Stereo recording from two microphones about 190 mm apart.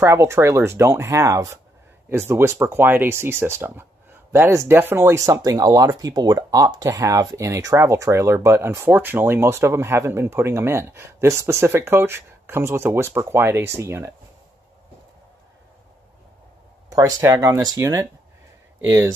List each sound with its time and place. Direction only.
0.0 s speech: 15° right (ahead or behind)
16.9 s speech: 20° right (ahead or behind)